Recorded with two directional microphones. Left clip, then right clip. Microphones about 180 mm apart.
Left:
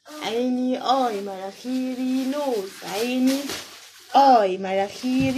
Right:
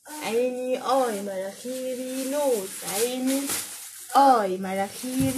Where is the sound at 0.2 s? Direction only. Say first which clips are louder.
Left 1 dB; 20° left (ahead or behind).